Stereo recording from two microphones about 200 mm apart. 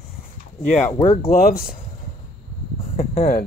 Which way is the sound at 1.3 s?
45° left (ahead or behind).